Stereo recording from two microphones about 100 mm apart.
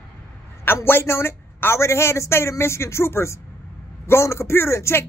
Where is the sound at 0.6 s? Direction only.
20° left (ahead or behind).